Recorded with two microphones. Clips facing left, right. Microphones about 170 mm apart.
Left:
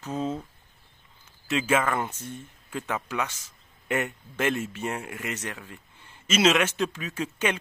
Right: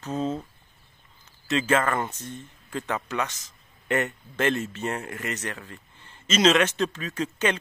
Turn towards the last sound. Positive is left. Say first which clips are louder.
# right 2 dB
turn(degrees=10)  # may be behind; listen again after turning